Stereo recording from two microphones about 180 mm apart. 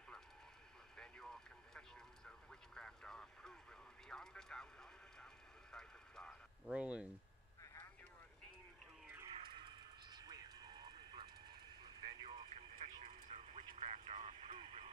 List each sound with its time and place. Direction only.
0.9 s vehicle: 5° left (ahead or behind)
9.3 s music: 25° right (ahead or behind)